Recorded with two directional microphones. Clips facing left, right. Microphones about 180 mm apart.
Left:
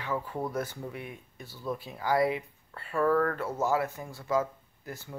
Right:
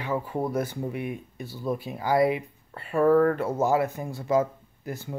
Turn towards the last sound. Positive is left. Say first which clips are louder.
# right 7 dB
turn(degrees=-20)  # may be behind; listen again after turning